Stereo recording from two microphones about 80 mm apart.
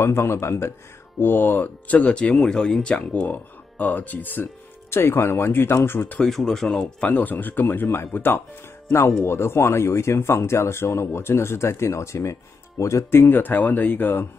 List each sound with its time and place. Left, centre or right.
0.0 s speech: left
6.1 s speech: centre
6.8 s speech: centre